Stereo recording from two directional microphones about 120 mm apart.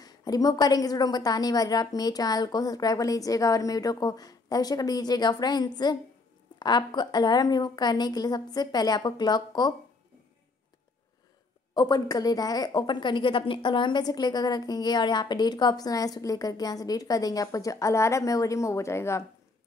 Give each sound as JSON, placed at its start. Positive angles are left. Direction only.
{"t": 0.0, "sound": "speech", "side_deg": 30}
{"t": 11.7, "sound": "speech", "side_deg": 35}